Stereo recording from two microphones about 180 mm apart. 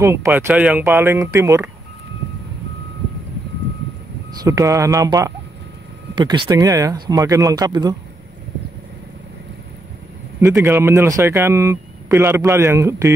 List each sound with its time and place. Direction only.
0.0 s speech: 15° right (ahead or behind)
4.4 s speech: 15° right (ahead or behind)
10.5 s speech: 10° right (ahead or behind)